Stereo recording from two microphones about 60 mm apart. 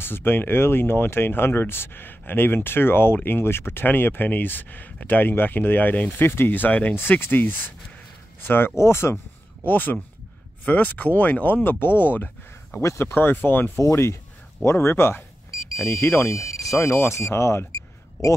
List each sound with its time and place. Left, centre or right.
0.0 s speech: left
9.7 s speech: left
12.8 s speech: left
13.1 s speech: left
13.7 s speech: left
15.7 s speech: left